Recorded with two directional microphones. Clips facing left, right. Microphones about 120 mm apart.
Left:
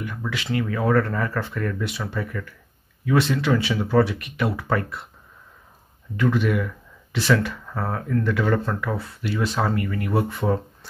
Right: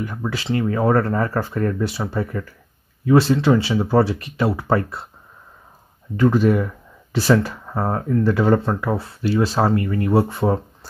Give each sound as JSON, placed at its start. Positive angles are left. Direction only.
{"t": 0.0, "sound": "speech", "side_deg": -35}
{"t": 6.1, "sound": "speech", "side_deg": -35}